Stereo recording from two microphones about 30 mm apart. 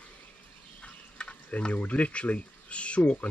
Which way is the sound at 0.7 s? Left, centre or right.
Left.